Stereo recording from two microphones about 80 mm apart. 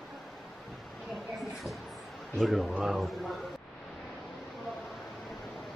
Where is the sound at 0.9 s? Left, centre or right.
Centre.